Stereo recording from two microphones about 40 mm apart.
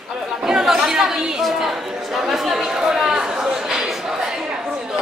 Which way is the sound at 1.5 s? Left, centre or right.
Centre.